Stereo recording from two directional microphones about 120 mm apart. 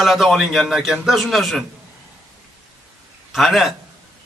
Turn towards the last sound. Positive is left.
turn(degrees=0)  # may be behind; listen again after turning